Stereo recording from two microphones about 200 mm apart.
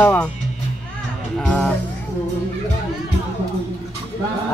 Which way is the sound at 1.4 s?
5° left (ahead or behind).